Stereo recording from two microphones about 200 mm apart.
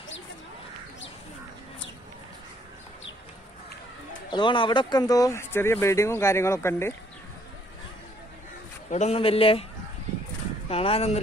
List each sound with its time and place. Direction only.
4.3 s speech: 25° left (ahead or behind)
8.9 s a man's voice: 30° left (ahead or behind)
10.7 s a man's voice: 30° left (ahead or behind)